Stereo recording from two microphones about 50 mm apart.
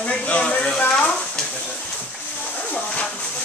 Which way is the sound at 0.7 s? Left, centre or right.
Left.